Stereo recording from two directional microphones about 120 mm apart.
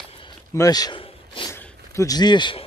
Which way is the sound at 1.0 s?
45° left (ahead or behind).